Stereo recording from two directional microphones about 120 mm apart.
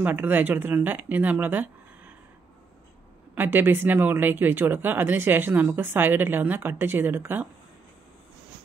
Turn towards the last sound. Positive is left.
turn(degrees=-15)  # may be behind; listen again after turning